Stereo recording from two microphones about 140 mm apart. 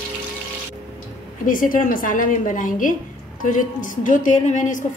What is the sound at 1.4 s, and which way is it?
A woman's voice, 75° left (ahead or behind).